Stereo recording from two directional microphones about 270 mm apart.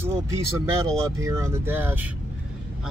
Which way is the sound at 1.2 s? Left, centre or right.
Centre.